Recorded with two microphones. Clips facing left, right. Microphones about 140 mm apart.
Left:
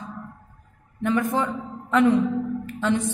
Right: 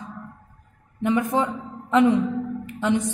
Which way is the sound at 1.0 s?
20° right (ahead or behind).